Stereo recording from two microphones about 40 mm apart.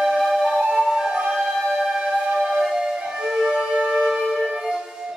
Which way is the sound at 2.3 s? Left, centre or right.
Centre.